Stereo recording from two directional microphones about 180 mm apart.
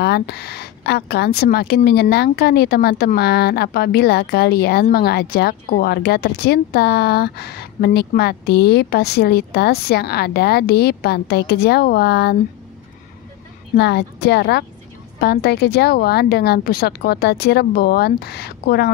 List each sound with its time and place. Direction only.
0.0 s speech: 65° left (ahead or behind)
13.7 s speech: 65° left (ahead or behind)